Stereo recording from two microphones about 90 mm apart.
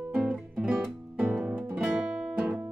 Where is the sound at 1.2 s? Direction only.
15° right (ahead or behind).